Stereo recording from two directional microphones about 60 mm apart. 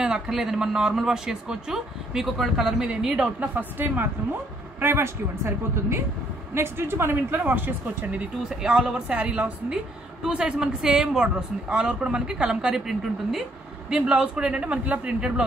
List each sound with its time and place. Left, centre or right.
0.0 s speech: centre
3.3 s speech: right
8.5 s speech: centre